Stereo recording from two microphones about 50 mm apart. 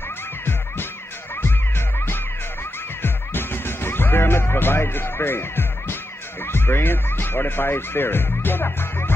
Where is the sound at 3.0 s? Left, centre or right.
Left.